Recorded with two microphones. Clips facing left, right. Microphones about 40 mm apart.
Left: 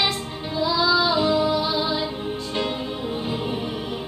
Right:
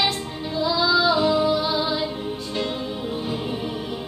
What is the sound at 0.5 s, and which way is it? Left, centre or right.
Female singing, centre.